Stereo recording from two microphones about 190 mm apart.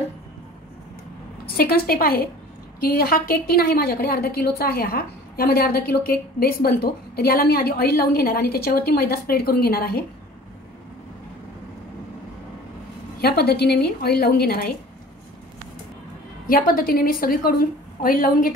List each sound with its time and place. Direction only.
1.4 s a woman's voice: 55° left (ahead or behind)
13.2 s a woman's voice: 55° left (ahead or behind)
16.4 s a woman's voice: 50° left (ahead or behind)